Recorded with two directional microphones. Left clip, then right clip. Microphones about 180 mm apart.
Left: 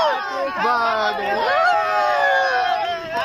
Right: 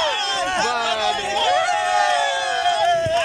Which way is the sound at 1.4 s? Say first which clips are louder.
Left 2 dB; 15° right (ahead or behind).